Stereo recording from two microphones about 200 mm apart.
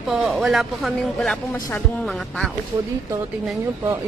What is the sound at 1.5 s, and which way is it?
Speech, 15° left (ahead or behind).